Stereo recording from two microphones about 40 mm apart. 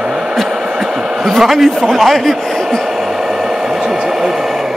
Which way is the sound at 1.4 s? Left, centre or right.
Centre.